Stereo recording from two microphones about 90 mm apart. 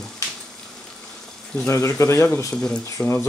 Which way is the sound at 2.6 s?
10° left (ahead or behind).